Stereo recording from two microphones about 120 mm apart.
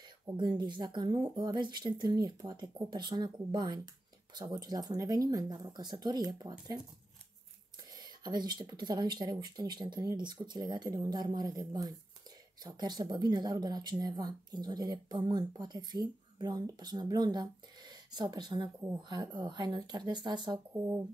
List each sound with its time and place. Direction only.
0.4 s speech: 40° right (ahead or behind)
7.9 s speech: 35° right (ahead or behind)
20.7 s speech: 20° right (ahead or behind)